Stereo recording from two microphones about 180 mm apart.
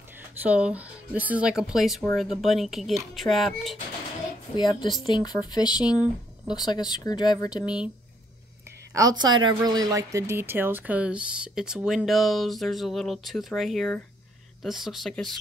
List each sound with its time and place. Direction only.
0.4 s a woman's voice: 5° right (ahead or behind)
4.6 s speech: 25° left (ahead or behind)
7.6 s a woman's voice: 5° right (ahead or behind)
8.9 s a woman's voice: 20° right (ahead or behind); by 15.3 s centre (ahead or behind)